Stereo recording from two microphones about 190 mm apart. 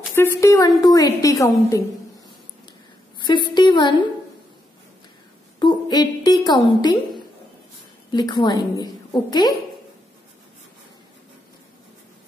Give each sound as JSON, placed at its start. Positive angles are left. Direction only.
{"t": 0.1, "sound": "a woman's voice", "side_deg": 15}
{"t": 3.2, "sound": "a woman's voice", "side_deg": 25}
{"t": 5.6, "sound": "a woman's voice", "side_deg": 20}